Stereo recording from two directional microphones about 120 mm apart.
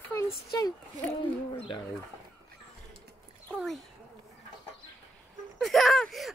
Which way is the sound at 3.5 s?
Centre (ahead or behind).